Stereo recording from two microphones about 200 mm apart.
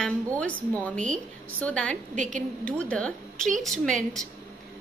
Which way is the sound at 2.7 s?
5° left (ahead or behind).